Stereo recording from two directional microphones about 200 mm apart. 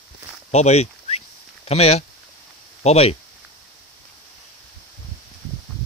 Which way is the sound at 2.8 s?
30° left (ahead or behind).